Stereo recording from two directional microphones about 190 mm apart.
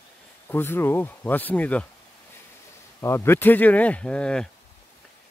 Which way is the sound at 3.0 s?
15° left (ahead or behind).